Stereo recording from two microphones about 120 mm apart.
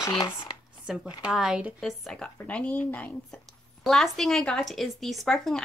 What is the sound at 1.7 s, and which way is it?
Speech, 5° left (ahead or behind).